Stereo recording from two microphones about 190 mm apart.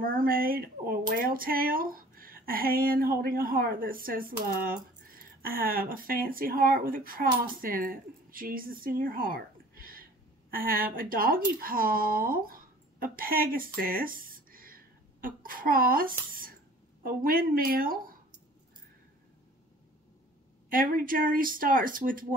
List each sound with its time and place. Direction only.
0.0 s speech: 50° right (ahead or behind)
20.7 s speech: 45° right (ahead or behind)